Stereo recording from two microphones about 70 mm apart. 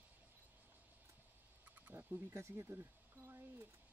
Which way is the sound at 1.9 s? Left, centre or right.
Right.